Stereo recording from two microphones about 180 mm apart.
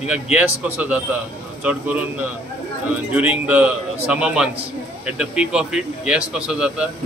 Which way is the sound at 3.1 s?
10° right (ahead or behind).